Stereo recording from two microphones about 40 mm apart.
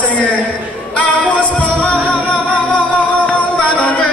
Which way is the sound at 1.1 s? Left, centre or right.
Left.